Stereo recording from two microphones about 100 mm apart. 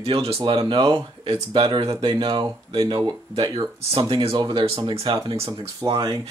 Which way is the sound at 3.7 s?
65° right (ahead or behind).